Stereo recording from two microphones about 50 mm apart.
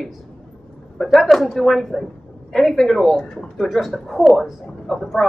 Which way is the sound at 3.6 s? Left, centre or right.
Centre.